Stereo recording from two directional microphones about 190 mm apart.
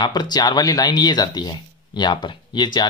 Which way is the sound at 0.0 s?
20° left (ahead or behind).